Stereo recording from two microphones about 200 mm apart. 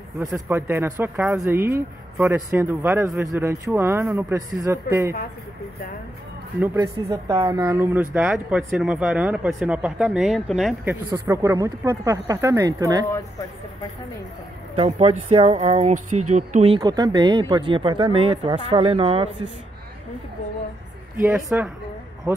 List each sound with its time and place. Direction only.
0.2 s speech: 15° right (ahead or behind)
6.6 s speech: 15° right (ahead or behind)
11.2 s speech: 15° right (ahead or behind)
14.8 s speech: 30° right (ahead or behind)
21.2 s speech: 10° right (ahead or behind)